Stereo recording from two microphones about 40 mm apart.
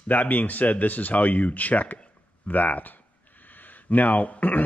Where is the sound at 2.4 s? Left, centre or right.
Left.